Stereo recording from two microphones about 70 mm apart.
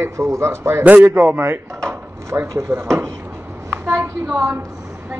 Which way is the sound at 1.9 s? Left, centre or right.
Right.